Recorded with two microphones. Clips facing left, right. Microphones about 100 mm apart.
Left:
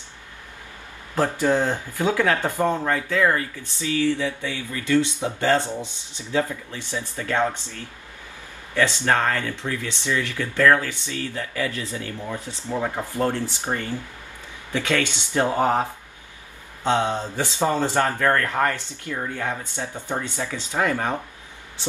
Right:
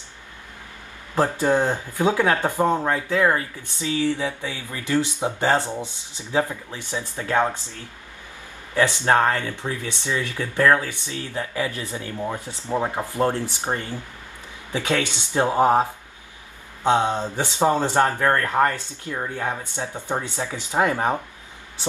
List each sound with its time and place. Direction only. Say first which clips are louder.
1.4 s speech: right 1 dB; 15° right (ahead or behind)
9.0 s speech: right 2 dB; 20° right (ahead or behind)
12.4 s speech: left 1 dB; 20° left (ahead or behind)
12.6 s speech: right 2 dB; 20° right (ahead or behind)